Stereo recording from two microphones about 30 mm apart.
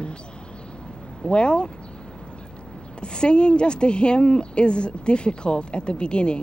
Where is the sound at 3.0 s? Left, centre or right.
Left.